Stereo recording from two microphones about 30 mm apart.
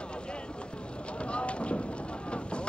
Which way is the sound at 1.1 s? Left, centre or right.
Left.